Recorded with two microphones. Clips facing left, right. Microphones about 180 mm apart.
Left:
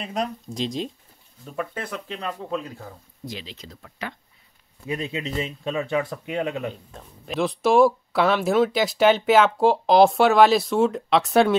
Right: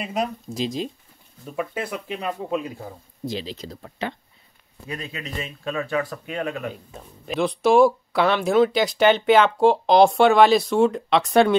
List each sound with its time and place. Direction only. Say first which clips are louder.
0.0 s speech: right 2 dB; 5° right (ahead or behind)
3.3 s speech: right 7 dB; 35° right (ahead or behind)
4.8 s speech: left 5 dB; 25° left (ahead or behind)
6.7 s speech: right 2 dB; 5° right (ahead or behind)